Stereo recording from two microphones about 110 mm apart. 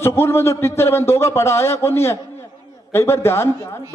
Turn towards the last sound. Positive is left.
turn(degrees=25)  # may be behind; listen again after turning